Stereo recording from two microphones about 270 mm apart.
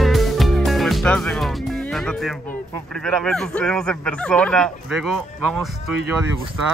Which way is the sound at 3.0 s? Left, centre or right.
Centre.